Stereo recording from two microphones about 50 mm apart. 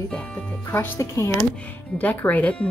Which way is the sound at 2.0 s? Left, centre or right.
Left.